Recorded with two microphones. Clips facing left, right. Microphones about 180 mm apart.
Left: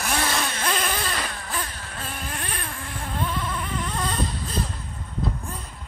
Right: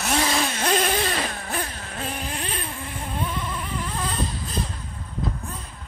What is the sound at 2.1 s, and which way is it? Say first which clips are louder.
Vehicle: right 3 dB; 20° right (ahead or behind).